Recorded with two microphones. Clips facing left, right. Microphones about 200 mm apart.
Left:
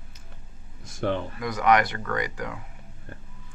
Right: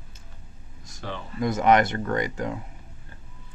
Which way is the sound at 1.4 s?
25° right (ahead or behind).